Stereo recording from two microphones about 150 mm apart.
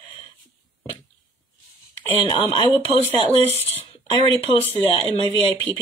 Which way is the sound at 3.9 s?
30° left (ahead or behind).